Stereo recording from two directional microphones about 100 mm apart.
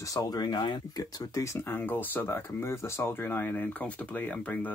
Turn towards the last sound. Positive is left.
turn(degrees=15)  # may be behind; listen again after turning